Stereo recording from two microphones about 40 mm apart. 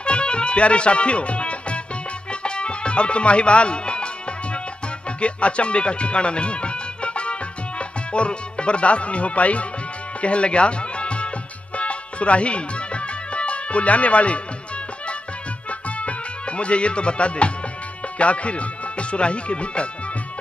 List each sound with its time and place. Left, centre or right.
0.0 s music: left
5.2 s speech: left
11.7 s music: left
16.0 s music: left
18.2 s speech: left